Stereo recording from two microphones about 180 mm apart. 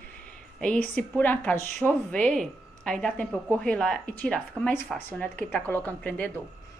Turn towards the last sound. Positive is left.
turn(degrees=10)  # may be behind; listen again after turning